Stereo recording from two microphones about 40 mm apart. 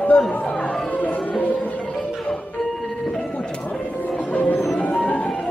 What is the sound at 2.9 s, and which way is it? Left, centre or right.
Music, centre.